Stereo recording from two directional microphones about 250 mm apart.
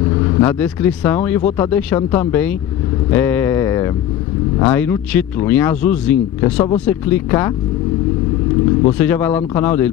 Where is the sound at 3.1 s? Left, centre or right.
Centre.